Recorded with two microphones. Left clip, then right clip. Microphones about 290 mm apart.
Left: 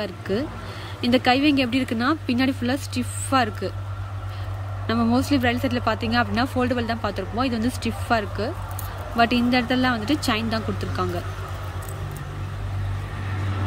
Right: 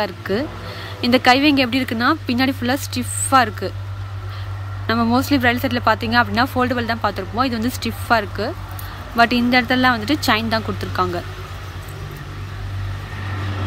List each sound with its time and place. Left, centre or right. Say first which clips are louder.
0.0 s speech: right 5 dB; centre
4.8 s speech: right 4 dB; centre